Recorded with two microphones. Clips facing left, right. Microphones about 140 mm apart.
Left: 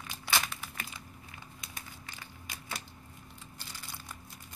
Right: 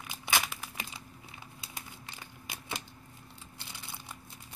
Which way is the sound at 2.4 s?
25° right (ahead or behind).